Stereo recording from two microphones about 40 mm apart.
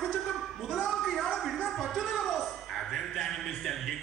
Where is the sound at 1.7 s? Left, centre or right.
Centre.